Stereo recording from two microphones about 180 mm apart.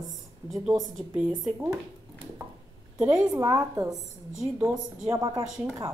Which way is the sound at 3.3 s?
20° right (ahead or behind).